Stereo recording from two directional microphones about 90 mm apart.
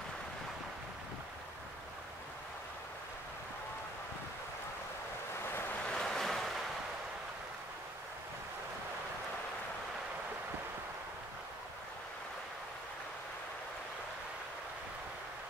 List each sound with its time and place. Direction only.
5.4 s waves: 25° left (ahead or behind)
5.9 s waves: 5° left (ahead or behind)